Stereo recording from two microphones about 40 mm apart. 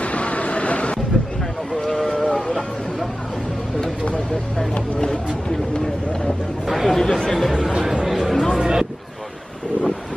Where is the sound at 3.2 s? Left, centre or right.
Centre.